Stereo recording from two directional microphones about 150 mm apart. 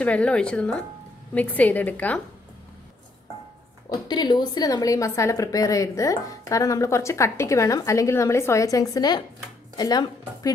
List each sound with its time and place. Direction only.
0.0 s a woman's voice: 10° left (ahead or behind)
3.9 s a woman's voice: 30° left (ahead or behind)